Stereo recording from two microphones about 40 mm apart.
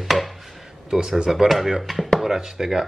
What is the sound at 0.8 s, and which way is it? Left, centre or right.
Speech, centre.